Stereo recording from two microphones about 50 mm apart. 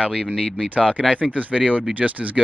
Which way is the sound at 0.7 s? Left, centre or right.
Right.